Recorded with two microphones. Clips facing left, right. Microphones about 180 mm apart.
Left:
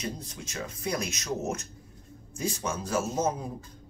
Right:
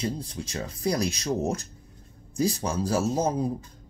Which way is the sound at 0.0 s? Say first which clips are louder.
Right 6 dB; 30° right (ahead or behind).